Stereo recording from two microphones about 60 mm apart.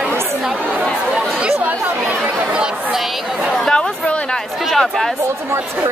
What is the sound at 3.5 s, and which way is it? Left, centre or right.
Chatter, centre.